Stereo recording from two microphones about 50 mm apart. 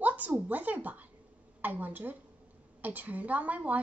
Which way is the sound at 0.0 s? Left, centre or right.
Right.